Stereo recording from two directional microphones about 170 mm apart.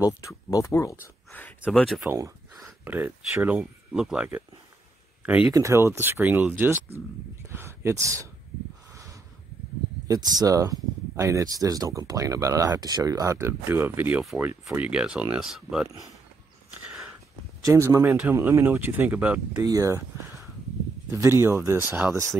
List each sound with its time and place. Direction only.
0.0 s speech: 20° left (ahead or behind)
2.0 s speech: 20° right (ahead or behind)
10.0 s speech: 20° right (ahead or behind); by 15.9 s 5° right (ahead or behind)
16.8 s a sound: 5° right (ahead or behind)
17.6 s speech: 15° right (ahead or behind)
19.6 s speech: 20° right (ahead or behind)
21.1 s speech: 15° right (ahead or behind)